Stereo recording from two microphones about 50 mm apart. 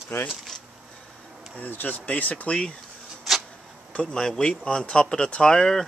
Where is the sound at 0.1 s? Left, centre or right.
Left.